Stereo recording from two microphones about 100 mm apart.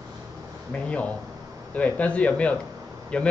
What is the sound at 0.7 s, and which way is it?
A man's voice, 15° left (ahead or behind).